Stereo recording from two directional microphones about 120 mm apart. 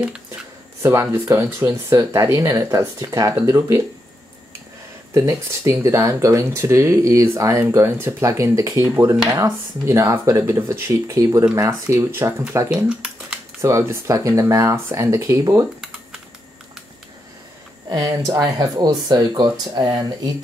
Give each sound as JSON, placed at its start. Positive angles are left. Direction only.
{"t": 0.8, "sound": "speech", "side_deg": -25}
{"t": 5.1, "sound": "speech", "side_deg": -25}
{"t": 12.7, "sound": "a sound", "side_deg": -10}
{"t": 13.6, "sound": "speech", "side_deg": -25}
{"t": 17.8, "sound": "speech", "side_deg": -35}